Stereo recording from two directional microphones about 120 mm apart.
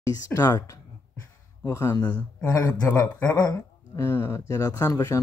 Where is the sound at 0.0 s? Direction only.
30° left (ahead or behind).